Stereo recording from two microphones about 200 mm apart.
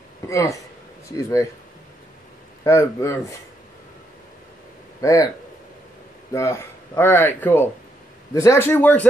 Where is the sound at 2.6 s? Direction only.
15° left (ahead or behind).